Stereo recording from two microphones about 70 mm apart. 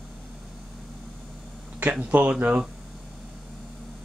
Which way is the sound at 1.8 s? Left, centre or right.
Right.